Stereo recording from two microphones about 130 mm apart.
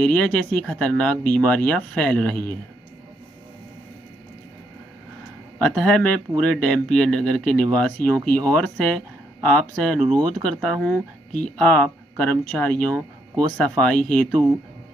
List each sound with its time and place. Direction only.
0.0 s speech: 10° left (ahead or behind)
5.6 s speech: 10° left (ahead or behind)